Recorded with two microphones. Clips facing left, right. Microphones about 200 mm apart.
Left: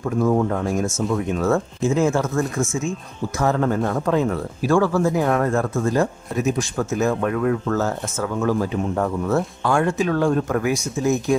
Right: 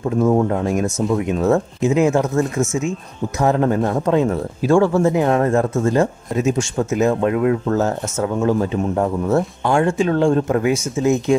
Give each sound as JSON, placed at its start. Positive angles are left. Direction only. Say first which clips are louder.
{"t": 0.2, "sound": "speech", "louder": "right 3 dB", "side_deg": -25}